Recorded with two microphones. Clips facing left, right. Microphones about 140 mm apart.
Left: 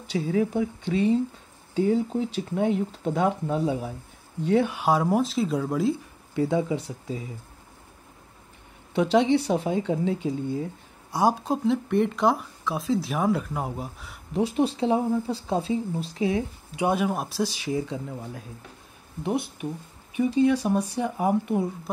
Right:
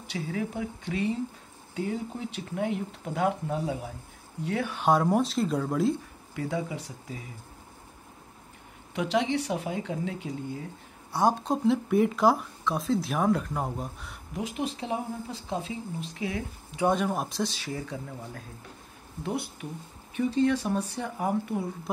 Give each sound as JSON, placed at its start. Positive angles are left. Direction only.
{"t": 0.1, "sound": "speech", "side_deg": 30}
{"t": 4.8, "sound": "speech", "side_deg": 0}
{"t": 6.3, "sound": "speech", "side_deg": 25}
{"t": 8.9, "sound": "speech", "side_deg": 30}
{"t": 11.1, "sound": "speech", "side_deg": 10}
{"t": 14.3, "sound": "speech", "side_deg": 35}
{"t": 16.8, "sound": "speech", "side_deg": 5}